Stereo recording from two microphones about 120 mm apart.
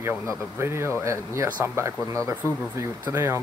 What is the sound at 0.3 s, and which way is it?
Speech, 20° right (ahead or behind).